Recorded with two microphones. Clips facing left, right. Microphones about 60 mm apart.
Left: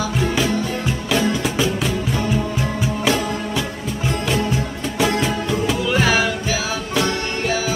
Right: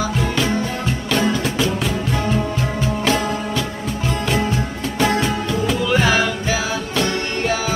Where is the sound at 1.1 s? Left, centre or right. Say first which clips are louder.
Even; centre.